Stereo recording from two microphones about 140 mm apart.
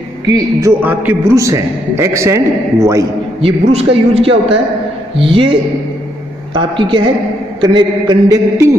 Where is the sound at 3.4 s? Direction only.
45° right (ahead or behind).